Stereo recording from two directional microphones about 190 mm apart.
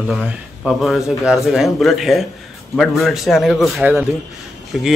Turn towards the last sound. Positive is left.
turn(degrees=0)  # may be behind; listen again after turning